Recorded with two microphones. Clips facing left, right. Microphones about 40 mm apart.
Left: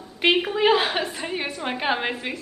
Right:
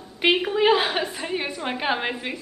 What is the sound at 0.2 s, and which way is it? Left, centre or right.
A woman's voice, centre.